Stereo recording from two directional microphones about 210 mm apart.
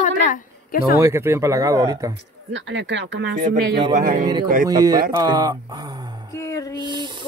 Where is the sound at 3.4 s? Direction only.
40° right (ahead or behind).